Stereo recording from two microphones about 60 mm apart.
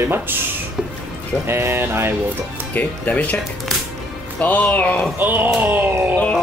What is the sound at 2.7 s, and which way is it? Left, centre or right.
Speech, left.